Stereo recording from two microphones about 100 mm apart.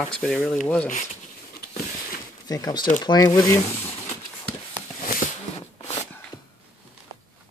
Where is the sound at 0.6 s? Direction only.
15° left (ahead or behind).